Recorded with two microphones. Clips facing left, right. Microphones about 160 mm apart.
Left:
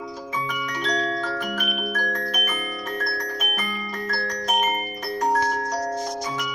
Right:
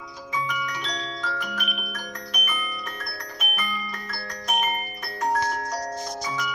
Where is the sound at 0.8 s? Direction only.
50° left (ahead or behind).